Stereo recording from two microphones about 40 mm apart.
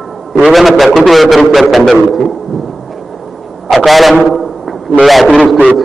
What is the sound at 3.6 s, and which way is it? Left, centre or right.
Speech, centre.